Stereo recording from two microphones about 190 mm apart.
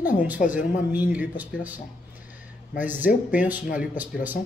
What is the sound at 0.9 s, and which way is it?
Speech, 10° right (ahead or behind).